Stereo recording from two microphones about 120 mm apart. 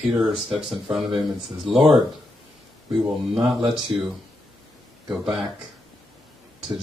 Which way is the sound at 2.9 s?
5° right (ahead or behind).